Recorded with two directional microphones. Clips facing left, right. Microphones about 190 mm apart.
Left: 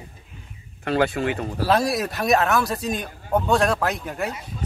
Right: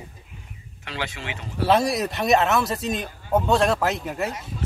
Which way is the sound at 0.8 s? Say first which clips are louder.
Left 11 dB; 55° left (ahead or behind).